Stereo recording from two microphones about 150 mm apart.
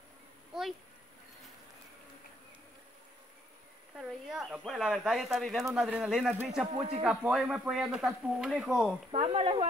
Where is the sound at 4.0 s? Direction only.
5° right (ahead or behind).